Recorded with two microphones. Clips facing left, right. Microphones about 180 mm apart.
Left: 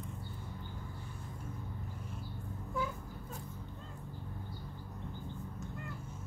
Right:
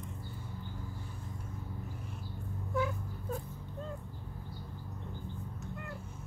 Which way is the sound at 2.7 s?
65° right (ahead or behind).